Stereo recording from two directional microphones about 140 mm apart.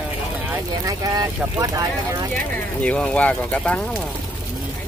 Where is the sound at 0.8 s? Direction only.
25° right (ahead or behind).